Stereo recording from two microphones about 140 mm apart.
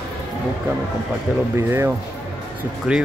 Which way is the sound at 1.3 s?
15° right (ahead or behind).